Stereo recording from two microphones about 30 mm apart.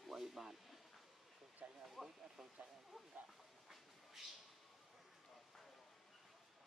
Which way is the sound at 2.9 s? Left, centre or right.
Centre.